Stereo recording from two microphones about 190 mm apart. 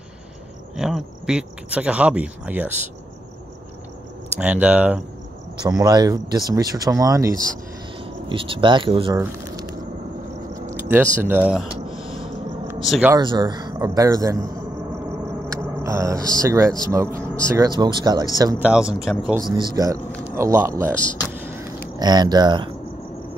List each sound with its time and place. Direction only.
0.7 s speech: centre (ahead or behind)
4.4 s speech: 5° right (ahead or behind)
5.6 s speech: 20° right (ahead or behind)
8.0 s speech: 30° right (ahead or behind)
10.5 s a sound: 15° right (ahead or behind)
11.2 s speech: 10° right (ahead or behind)
11.9 s a sound: 30° right (ahead or behind)
12.8 s speech: centre (ahead or behind)
13.1 s speech: 25° right (ahead or behind)
15.4 s a sound: 15° right (ahead or behind)
16.3 s speech: 15° right (ahead or behind)
18.6 s speech: 5° right (ahead or behind)
19.4 s speech: 25° right (ahead or behind)
21.2 s a sound: 15° right (ahead or behind)